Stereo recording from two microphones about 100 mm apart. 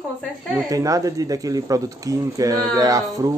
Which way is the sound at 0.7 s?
35° right (ahead or behind).